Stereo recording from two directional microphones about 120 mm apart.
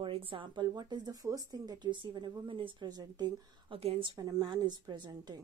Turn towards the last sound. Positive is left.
turn(degrees=-40)  # may be behind; listen again after turning